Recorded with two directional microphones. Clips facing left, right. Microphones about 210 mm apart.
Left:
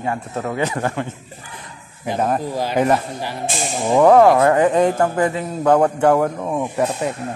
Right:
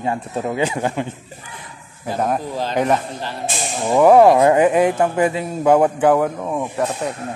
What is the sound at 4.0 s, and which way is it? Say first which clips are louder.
A man's voice: right 1 dB; 10° right (ahead or behind).